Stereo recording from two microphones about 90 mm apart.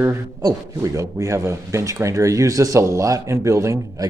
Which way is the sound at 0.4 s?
40° right (ahead or behind).